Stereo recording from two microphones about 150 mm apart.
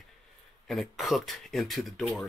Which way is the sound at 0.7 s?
Centre (ahead or behind).